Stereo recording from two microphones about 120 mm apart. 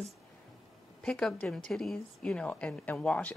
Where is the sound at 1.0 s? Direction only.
5° left (ahead or behind).